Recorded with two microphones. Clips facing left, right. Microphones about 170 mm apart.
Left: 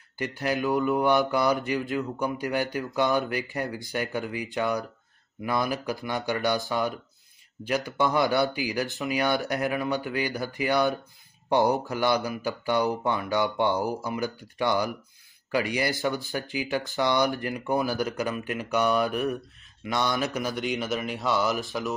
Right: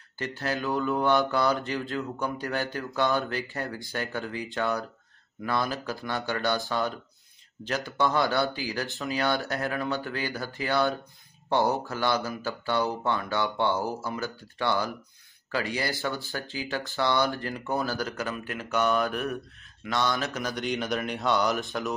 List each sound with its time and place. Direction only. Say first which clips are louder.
0.2 s mantra: left 3 dB; 15° left (ahead or behind)
20.3 s speech: left 2 dB; 5° left (ahead or behind)